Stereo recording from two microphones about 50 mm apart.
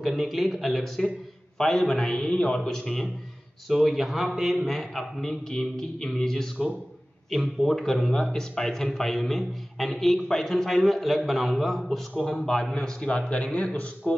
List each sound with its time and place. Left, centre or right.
0.0 s a man's voice: centre
13.0 s a man's voice: left